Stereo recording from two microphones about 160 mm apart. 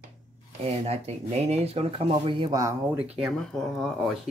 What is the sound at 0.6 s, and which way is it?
Speech, 40° right (ahead or behind).